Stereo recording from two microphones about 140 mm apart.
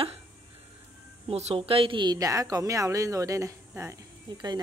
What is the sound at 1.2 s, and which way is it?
A woman's voice, 45° right (ahead or behind).